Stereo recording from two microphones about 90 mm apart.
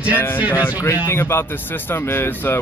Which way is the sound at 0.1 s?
25° left (ahead or behind).